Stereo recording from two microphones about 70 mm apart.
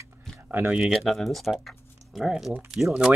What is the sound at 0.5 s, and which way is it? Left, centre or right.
Speech, right.